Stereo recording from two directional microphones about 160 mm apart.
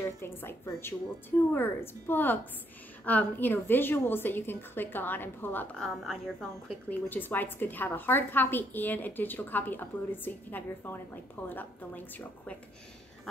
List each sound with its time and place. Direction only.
0.0 s a woman's voice: 15° left (ahead or behind)
6.9 s a woman's voice: 10° left (ahead or behind)